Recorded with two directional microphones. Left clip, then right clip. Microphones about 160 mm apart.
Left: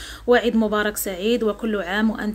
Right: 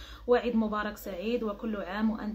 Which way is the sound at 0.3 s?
30° left (ahead or behind).